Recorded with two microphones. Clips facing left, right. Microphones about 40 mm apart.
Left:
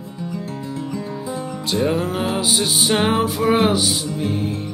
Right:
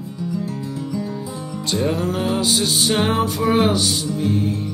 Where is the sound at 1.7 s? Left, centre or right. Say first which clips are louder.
Left 1 dB; centre.